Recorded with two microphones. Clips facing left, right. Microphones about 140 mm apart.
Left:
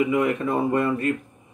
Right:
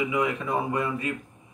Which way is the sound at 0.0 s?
60° left (ahead or behind).